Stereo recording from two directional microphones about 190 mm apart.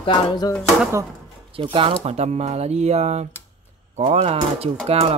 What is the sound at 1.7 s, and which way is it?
A man's voice, 30° right (ahead or behind).